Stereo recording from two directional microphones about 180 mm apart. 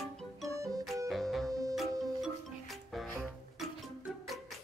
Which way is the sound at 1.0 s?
Centre (ahead or behind).